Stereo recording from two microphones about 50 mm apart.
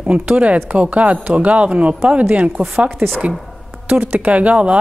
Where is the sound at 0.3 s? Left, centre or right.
Right.